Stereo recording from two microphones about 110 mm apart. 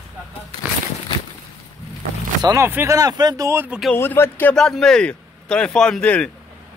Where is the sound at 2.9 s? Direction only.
35° right (ahead or behind).